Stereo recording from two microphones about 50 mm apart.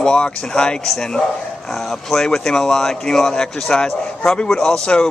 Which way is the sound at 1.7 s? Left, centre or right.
Centre.